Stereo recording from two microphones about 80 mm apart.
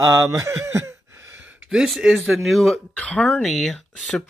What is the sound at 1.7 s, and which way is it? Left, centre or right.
Speech, centre.